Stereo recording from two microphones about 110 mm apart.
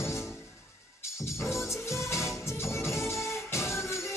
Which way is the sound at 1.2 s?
25° left (ahead or behind).